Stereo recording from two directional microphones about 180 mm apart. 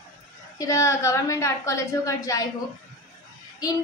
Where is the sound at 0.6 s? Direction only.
15° left (ahead or behind).